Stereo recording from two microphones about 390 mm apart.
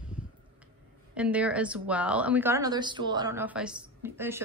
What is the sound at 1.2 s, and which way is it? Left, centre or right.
A woman's voice, centre.